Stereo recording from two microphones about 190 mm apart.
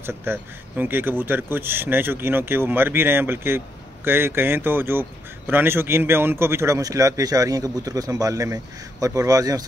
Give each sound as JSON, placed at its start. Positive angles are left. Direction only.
{"t": 0.0, "sound": "speech", "side_deg": -10}